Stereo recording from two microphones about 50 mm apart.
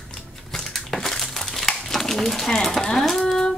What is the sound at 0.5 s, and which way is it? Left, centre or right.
Crumpling, centre.